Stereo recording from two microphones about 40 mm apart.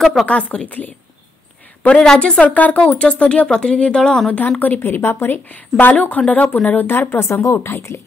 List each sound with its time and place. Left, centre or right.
0.0 s a woman's voice: centre
0.3 s a woman's voice: left
0.7 s speech: left
1.8 s a woman's voice: left
2.4 s a woman's voice: left
4.3 s speech: left
4.8 s speech: left
5.5 s speech: left
5.9 s speech: left
6.9 s speech: left